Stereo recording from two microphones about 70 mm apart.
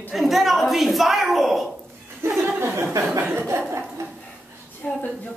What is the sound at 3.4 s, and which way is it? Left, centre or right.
Speech, right.